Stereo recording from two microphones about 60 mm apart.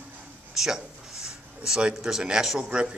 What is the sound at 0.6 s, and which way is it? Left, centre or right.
A man's voice, centre.